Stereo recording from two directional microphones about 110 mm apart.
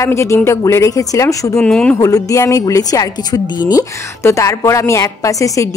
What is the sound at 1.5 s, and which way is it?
Speech, 5° left (ahead or behind).